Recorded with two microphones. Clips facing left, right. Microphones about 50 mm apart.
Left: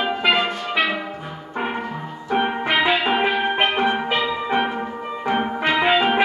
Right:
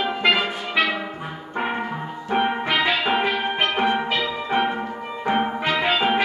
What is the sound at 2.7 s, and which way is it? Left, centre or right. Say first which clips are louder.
Music: left 4 dB; centre.